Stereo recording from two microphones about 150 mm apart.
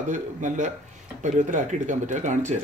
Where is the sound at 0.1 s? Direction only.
55° right (ahead or behind).